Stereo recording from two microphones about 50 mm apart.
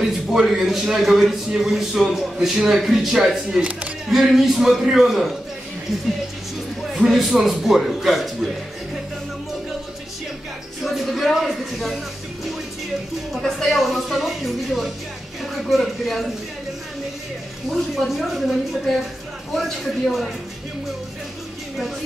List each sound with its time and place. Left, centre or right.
0.0 s a man's voice: centre
3.5 s speech: centre
4.1 s a man's voice: centre
7.1 s speech: centre
10.8 s a sound: centre
11.3 s speech: centre
13.4 s a woman's voice: centre
13.7 s speech: centre
17.6 s speech: centre